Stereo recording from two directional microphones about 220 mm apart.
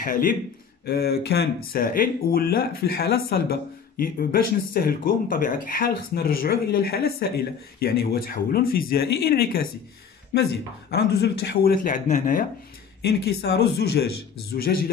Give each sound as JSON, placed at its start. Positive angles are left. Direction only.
{"t": 0.0, "sound": "a man's voice", "side_deg": 40}
{"t": 10.9, "sound": "speech", "side_deg": 45}
{"t": 13.0, "sound": "speech", "side_deg": 50}